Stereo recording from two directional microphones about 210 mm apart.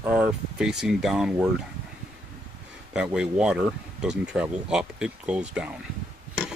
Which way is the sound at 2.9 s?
5° right (ahead or behind).